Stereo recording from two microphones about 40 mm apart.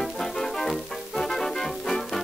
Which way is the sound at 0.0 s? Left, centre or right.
Centre.